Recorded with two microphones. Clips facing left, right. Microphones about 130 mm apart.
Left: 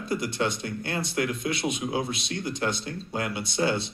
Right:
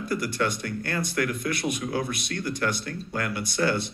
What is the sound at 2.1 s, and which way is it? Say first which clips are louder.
Speech: right 1 dB; 55° right (ahead or behind).